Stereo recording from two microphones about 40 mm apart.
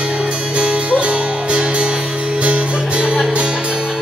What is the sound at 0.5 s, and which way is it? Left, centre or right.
Music, right.